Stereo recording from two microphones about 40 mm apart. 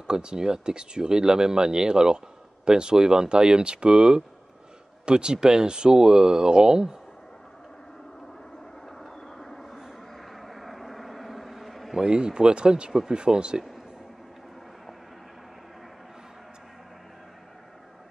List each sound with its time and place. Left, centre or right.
0.0 s speech: right
8.8 s vehicle: centre
12.0 s speech: centre